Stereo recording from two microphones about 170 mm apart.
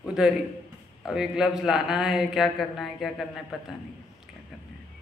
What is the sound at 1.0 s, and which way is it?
Speech, 5° right (ahead or behind).